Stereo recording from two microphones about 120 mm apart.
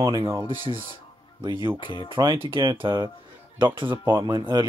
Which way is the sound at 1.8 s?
40° left (ahead or behind).